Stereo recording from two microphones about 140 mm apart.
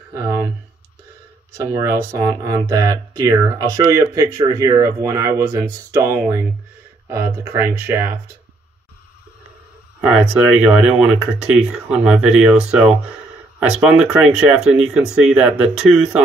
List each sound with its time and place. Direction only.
0.1 s speech: 20° right (ahead or behind)
1.6 s speech: 25° right (ahead or behind)
10.0 s speech: 10° right (ahead or behind)